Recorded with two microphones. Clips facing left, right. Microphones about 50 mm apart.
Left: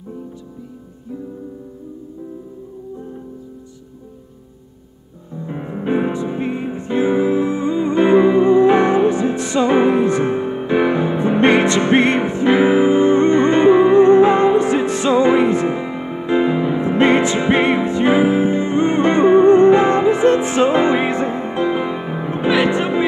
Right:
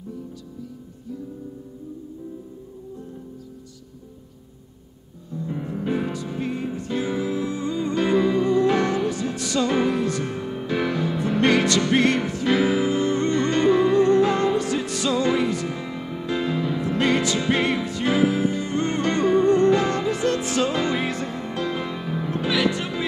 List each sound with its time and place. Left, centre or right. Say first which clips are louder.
5.3 s music: left 2 dB; left